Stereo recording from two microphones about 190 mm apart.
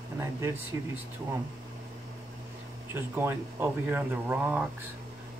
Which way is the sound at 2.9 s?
10° right (ahead or behind).